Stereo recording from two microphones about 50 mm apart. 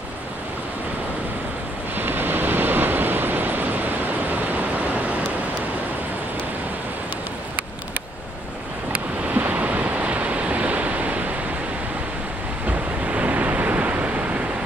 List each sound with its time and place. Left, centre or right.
2.0 s vehicle: right
4.4 s a sound: right
9.2 s waves: right
12.6 s waves: right